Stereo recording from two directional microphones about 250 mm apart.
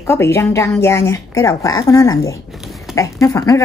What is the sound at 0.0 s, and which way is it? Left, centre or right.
A woman's voice, centre.